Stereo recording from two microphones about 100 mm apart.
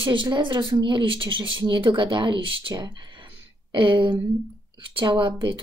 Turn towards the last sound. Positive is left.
turn(degrees=-50)  # may be behind; listen again after turning